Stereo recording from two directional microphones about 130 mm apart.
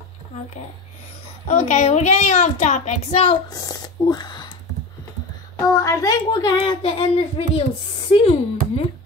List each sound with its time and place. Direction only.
1.5 s a woman's voice: 60° left (ahead or behind)
3.4 s speech: 30° left (ahead or behind)
5.8 s a woman's voice: 25° left (ahead or behind)
6.6 s speech: 45° left (ahead or behind)